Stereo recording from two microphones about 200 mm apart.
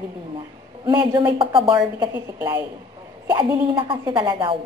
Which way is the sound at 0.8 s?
20° right (ahead or behind).